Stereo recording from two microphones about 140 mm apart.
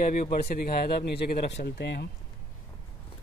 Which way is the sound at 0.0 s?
75° left (ahead or behind).